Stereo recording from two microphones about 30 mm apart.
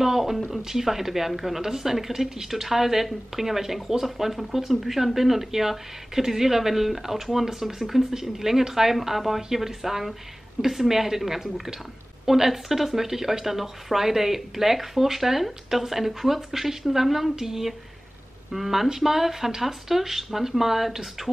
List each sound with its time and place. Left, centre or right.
0.0 s speech: centre
2.5 s speech: centre